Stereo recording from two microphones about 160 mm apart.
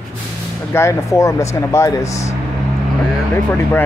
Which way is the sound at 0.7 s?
15° left (ahead or behind).